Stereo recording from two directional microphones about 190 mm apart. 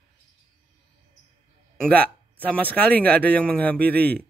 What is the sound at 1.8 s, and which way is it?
Speech, 5° left (ahead or behind).